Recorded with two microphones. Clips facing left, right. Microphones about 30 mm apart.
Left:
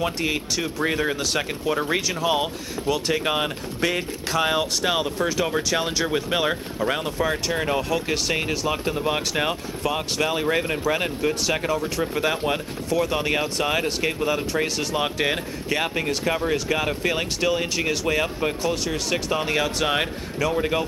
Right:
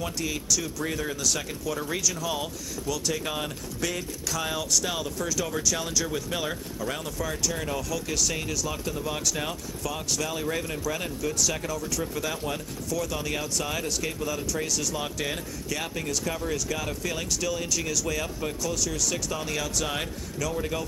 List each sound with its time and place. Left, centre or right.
0.0 s speech: left